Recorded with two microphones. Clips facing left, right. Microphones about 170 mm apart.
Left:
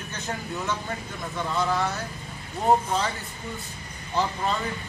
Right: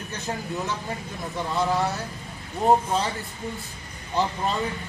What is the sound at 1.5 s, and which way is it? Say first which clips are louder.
Speech: right 2 dB; 20° right (ahead or behind).